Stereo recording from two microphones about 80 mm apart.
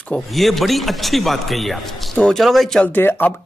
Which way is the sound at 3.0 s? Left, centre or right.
Left.